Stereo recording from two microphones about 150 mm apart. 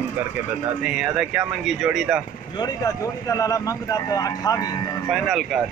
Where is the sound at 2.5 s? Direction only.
25° left (ahead or behind).